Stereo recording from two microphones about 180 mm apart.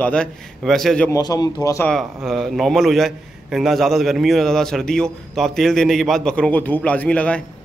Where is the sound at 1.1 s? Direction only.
20° left (ahead or behind).